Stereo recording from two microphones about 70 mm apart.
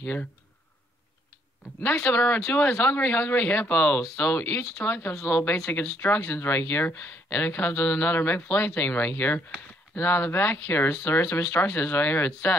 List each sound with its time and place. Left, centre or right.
0.0 s speech: left
1.8 s speech: left
11.4 s speech: left
11.8 s speech: left